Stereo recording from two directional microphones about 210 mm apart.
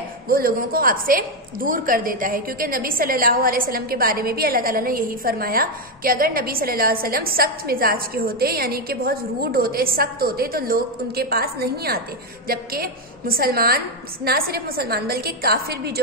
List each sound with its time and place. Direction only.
0.3 s a woman's voice: 45° right (ahead or behind)